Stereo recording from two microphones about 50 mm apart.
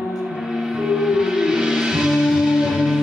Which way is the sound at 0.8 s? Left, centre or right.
Centre.